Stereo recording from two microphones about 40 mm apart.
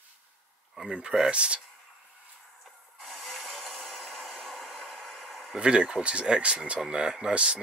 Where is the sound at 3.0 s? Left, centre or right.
Centre.